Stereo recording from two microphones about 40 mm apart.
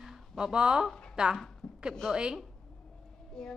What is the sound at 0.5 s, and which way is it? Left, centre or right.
Speech, right.